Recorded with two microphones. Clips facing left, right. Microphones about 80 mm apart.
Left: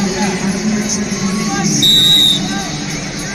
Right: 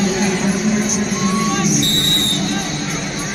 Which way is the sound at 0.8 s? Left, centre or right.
Right.